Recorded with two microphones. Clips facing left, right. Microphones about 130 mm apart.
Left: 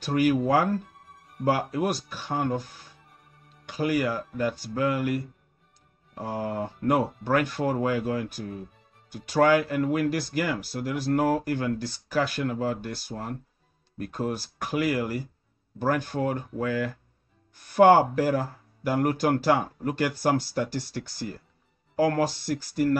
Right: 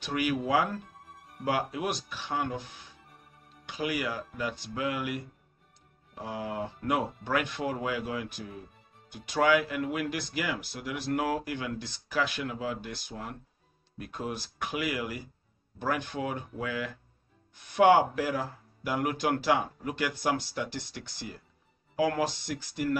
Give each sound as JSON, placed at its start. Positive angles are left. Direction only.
{"t": 0.0, "sound": "speech", "side_deg": 40}